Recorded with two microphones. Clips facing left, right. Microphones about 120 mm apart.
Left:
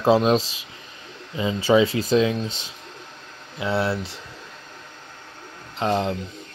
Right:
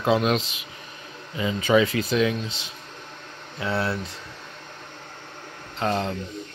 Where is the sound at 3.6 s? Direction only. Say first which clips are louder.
Left 3 dB; 25° left (ahead or behind).